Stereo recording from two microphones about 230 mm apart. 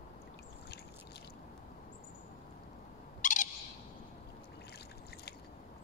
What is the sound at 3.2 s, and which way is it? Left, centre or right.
Owl, left.